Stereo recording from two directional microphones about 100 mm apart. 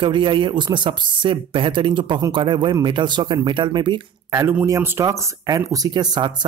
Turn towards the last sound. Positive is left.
turn(degrees=-45)  # may be behind; listen again after turning